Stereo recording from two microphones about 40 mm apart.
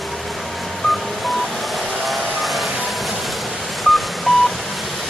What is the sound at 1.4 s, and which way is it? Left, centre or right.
Vehicle, centre.